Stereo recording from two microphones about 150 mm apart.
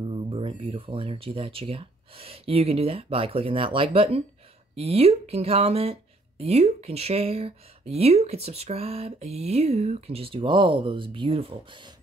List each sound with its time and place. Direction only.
0.0 s speech: 35° right (ahead or behind)